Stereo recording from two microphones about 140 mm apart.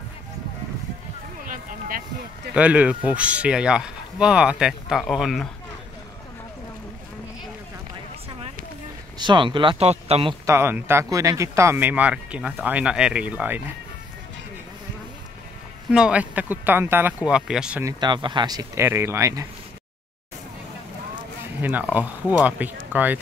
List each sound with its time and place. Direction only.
1.5 s a sound: 80° right
2.5 s speech: 10° right (ahead or behind)
9.2 s speech: 35° right (ahead or behind)
10.4 s speech: 20° right (ahead or behind)
15.9 s speech: 5° right (ahead or behind)
17.8 s speech: 35° right (ahead or behind)
21.5 s speech: 15° right (ahead or behind)